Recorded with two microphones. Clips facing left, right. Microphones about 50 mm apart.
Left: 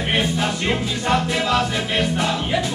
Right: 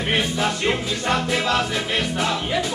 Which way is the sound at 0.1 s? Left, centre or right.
Centre.